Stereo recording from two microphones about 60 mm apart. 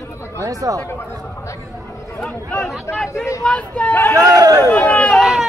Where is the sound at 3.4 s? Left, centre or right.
Left.